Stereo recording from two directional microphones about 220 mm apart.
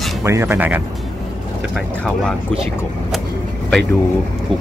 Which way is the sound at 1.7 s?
5° left (ahead or behind).